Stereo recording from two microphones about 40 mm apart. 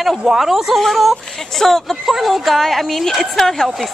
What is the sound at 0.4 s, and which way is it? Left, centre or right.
A woman's voice, centre.